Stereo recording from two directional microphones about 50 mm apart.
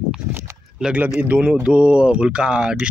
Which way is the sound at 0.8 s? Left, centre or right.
Centre.